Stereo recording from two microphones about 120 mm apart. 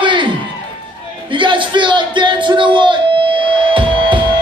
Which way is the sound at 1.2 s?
45° right (ahead or behind).